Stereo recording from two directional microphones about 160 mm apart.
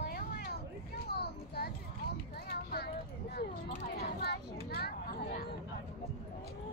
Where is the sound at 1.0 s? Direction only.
85° left.